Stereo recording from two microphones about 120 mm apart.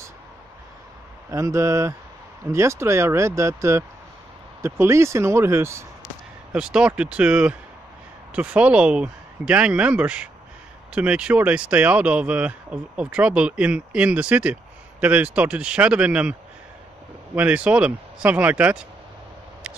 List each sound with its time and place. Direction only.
1.3 s speech: 25° right (ahead or behind)
6.5 s speech: 5° right (ahead or behind)
17.4 s speech: 10° right (ahead or behind)